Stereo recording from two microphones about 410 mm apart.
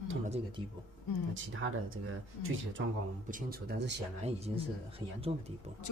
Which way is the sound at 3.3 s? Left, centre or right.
Right.